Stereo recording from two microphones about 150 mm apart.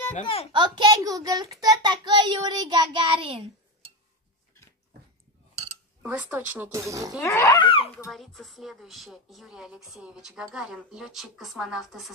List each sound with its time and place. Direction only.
0.2 s a child's voice: 35° left (ahead or behind)
0.5 s a child's voice: 30° right (ahead or behind)
6.0 s speech: 10° right (ahead or behind)
6.7 s a child's voice: 20° right (ahead or behind)
7.2 s dog: 15° left (ahead or behind)
7.5 s a child's voice: 35° left (ahead or behind)
8.1 s speech: centre (ahead or behind)